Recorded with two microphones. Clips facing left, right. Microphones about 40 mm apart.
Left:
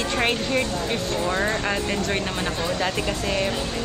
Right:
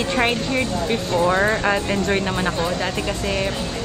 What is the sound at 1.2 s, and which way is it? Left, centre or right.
Speech, right.